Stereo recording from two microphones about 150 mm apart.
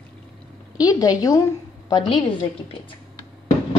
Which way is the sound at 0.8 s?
25° left (ahead or behind).